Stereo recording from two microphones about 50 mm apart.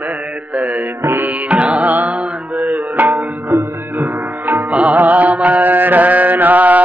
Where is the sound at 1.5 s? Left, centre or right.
Right.